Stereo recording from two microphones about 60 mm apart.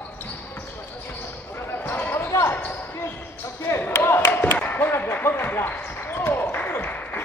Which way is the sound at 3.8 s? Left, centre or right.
Left.